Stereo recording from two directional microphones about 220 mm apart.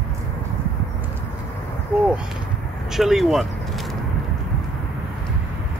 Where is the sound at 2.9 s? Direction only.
Centre (ahead or behind).